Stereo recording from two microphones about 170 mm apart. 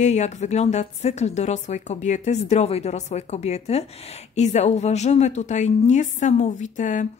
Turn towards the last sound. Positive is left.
turn(degrees=45)  # may be behind; listen again after turning